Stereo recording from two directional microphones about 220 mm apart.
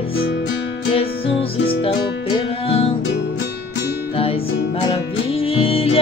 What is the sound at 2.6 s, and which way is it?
Music, 25° left (ahead or behind).